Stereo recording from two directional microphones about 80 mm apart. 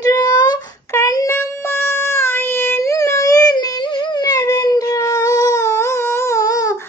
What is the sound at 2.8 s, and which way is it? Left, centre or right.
Music, left.